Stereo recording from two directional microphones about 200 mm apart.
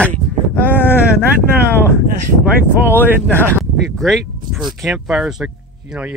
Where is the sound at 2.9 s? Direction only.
10° left (ahead or behind).